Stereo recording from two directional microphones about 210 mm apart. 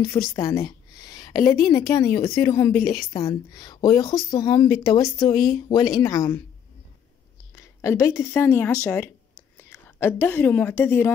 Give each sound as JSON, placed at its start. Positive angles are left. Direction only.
{"t": 0.3, "sound": "a woman's voice", "side_deg": 15}
{"t": 7.5, "sound": "a woman's voice", "side_deg": 15}